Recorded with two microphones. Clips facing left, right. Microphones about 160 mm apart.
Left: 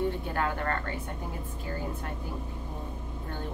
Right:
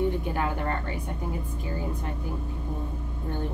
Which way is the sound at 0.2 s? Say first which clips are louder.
Right 2 dB; 15° right (ahead or behind).